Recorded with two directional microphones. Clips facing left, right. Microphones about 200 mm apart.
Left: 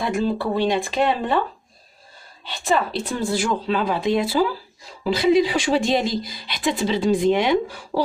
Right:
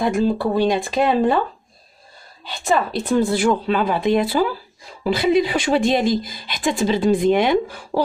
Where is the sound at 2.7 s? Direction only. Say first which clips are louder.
Right 4 dB; 50° right (ahead or behind).